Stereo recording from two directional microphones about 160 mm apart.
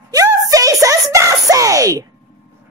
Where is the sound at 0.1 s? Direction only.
20° right (ahead or behind).